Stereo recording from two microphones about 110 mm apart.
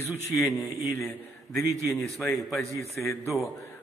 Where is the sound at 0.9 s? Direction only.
25° left (ahead or behind).